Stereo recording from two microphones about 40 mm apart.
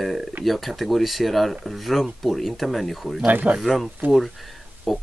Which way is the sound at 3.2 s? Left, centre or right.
Right.